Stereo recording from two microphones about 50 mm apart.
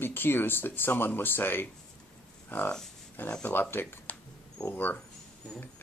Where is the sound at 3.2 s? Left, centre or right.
Left.